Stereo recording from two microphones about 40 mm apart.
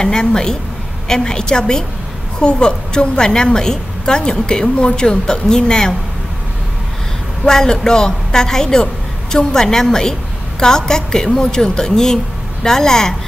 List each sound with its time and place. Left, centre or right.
0.0 s a woman's voice: centre
7.4 s a woman's voice: centre